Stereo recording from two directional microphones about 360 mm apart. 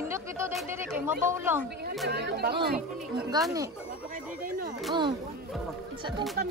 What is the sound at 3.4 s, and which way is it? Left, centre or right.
Speech, centre.